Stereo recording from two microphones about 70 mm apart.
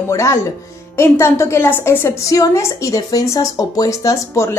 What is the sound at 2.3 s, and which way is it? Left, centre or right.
Speech, left.